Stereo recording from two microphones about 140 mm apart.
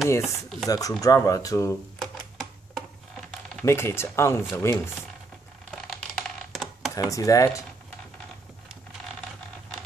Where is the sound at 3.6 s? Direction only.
20° left (ahead or behind).